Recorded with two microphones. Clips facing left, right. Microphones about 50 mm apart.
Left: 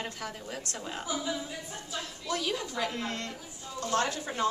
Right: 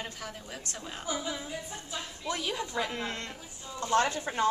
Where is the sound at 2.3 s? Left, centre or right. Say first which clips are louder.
Left 1 dB; right.